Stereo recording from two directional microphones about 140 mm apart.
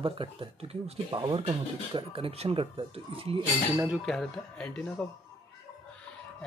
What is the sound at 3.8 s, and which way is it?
Speech, centre (ahead or behind).